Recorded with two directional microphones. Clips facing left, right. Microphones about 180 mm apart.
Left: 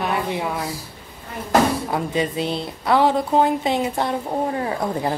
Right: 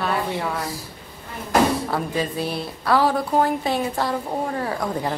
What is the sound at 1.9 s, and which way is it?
A woman's voice, 20° left (ahead or behind).